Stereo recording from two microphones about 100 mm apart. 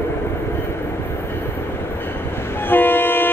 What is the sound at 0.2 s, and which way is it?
Train, 25° left (ahead or behind).